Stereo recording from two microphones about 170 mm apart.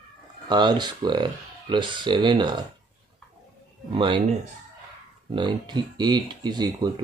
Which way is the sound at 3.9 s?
30° right (ahead or behind).